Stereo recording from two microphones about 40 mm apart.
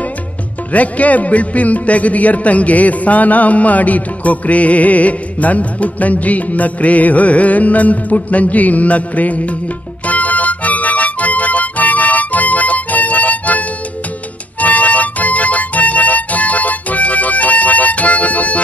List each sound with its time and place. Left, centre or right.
0.7 s a man's voice: left
10.0 s music: left